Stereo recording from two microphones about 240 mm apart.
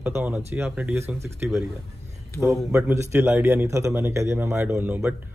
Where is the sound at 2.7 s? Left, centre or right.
Centre.